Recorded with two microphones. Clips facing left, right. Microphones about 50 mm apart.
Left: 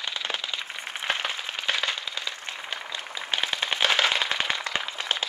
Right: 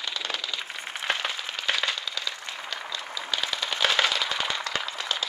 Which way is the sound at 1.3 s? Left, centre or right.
Left.